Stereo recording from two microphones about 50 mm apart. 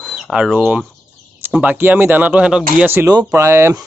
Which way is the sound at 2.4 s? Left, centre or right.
Centre.